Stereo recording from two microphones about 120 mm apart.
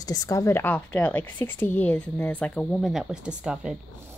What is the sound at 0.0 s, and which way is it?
A woman's voice, 30° left (ahead or behind).